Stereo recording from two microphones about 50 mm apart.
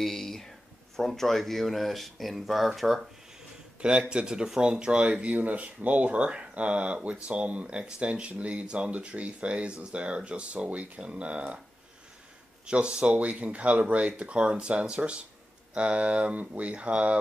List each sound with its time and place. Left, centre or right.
0.0 s a sound: centre
0.9 s speech: centre
3.8 s speech: right
12.6 s speech: right